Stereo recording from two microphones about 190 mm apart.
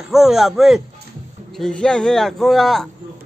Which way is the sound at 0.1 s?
Centre (ahead or behind).